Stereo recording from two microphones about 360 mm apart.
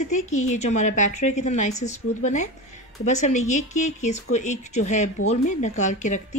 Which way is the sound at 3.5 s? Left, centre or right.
Centre.